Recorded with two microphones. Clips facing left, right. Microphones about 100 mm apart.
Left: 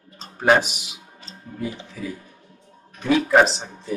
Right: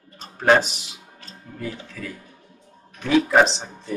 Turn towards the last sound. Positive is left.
turn(degrees=0)  # may be behind; listen again after turning